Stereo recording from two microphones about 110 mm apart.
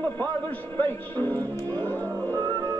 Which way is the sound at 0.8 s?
15° left (ahead or behind).